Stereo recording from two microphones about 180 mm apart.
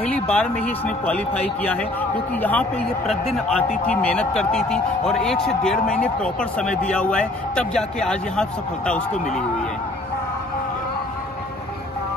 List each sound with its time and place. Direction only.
0.0 s a man's voice: 5° left (ahead or behind)